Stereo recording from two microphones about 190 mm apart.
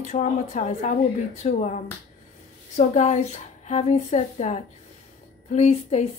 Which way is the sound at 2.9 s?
40° left (ahead or behind).